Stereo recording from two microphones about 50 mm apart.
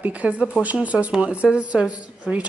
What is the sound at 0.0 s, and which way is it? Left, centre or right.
A woman's voice, right.